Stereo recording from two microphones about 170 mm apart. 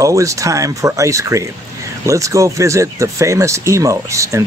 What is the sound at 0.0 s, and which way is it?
Speech, 20° right (ahead or behind).